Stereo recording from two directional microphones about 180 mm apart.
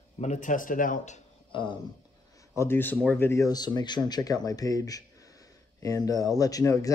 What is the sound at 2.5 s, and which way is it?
Speech, 10° left (ahead or behind).